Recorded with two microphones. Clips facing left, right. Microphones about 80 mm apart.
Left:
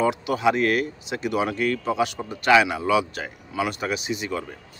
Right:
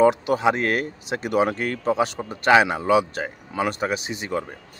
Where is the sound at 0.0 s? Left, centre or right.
Right.